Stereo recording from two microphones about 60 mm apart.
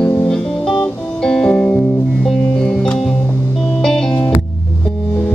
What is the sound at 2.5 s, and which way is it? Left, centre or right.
Music, centre.